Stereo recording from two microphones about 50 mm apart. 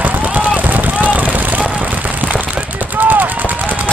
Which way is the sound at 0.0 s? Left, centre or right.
Right.